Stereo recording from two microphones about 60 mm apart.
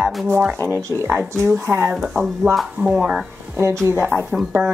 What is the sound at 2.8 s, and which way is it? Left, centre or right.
Speech, centre.